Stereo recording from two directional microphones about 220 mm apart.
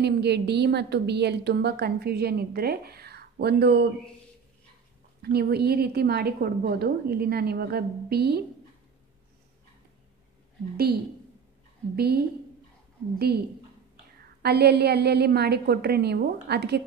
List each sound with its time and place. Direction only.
0.0 s a woman's voice: 50° right (ahead or behind)
5.2 s a woman's voice: 45° right (ahead or behind)
11.9 s a woman's voice: 45° right (ahead or behind)
14.4 s a woman's voice: 50° right (ahead or behind)